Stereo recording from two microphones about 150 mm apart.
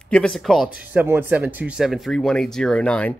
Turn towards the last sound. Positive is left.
turn(degrees=5)  # may be behind; listen again after turning